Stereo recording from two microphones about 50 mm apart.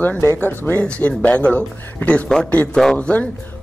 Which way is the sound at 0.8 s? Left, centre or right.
Left.